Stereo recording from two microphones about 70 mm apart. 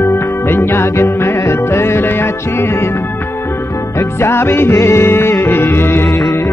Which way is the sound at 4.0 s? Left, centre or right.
Left.